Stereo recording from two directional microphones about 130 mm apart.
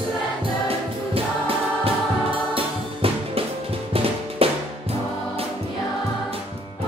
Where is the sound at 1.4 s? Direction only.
45° right (ahead or behind).